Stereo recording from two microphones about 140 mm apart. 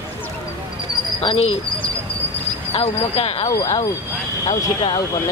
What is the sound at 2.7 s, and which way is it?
Speech, 45° left (ahead or behind).